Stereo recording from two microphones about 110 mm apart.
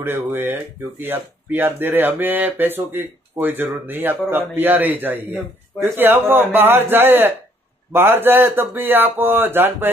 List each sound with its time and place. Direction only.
0.0 s speech: 20° right (ahead or behind)